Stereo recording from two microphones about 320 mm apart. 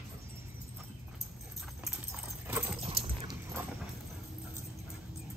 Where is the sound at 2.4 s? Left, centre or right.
Centre.